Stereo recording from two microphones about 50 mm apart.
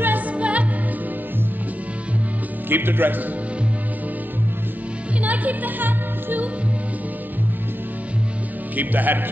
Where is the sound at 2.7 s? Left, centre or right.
Right.